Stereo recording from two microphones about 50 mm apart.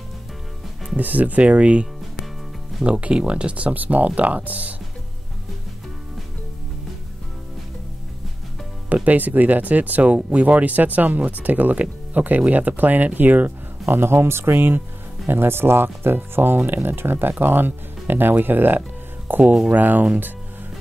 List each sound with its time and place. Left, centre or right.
0.9 s speech: right
8.8 s speech: right
13.8 s speech: right